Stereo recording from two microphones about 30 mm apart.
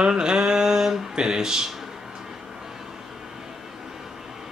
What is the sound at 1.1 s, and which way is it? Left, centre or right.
Speech, right.